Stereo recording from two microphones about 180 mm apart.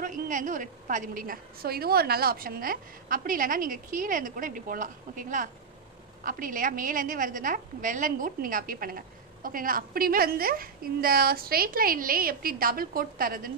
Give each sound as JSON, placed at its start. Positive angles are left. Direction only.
{"t": 0.0, "sound": "a woman's voice", "side_deg": -45}